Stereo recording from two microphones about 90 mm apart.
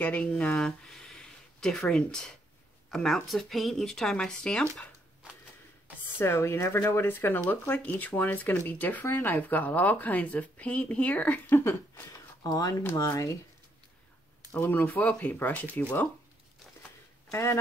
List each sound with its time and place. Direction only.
0.2 s speech: 5° left (ahead or behind)
6.1 s speech: 30° left (ahead or behind)
12.4 s speech: 40° left (ahead or behind)
14.6 s speech: 20° left (ahead or behind)
17.3 s speech: 35° left (ahead or behind)